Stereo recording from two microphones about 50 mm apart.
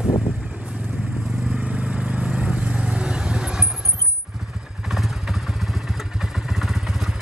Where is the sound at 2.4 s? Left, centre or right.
Right.